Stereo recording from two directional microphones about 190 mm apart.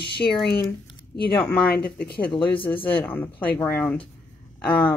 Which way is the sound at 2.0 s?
55° left (ahead or behind).